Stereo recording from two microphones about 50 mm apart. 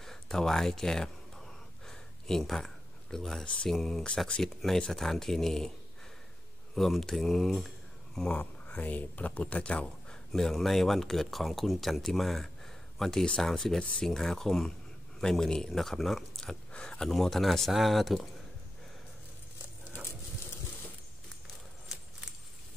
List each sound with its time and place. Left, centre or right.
0.0 s gasp: centre
3.7 s speech: centre
6.7 s speech: centre
8.4 s speech: left; by 16.3 s centre
16.7 s a sound: left
17.1 s speech: centre